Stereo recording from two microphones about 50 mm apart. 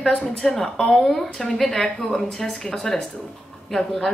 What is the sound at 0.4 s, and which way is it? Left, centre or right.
Speech, centre.